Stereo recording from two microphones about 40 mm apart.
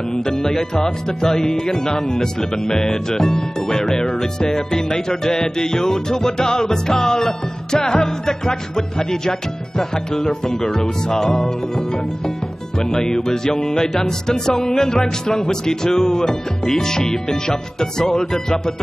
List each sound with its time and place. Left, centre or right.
0.1 s speech: centre